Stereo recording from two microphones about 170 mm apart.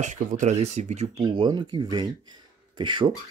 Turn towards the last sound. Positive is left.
turn(degrees=-30)  # may be behind; listen again after turning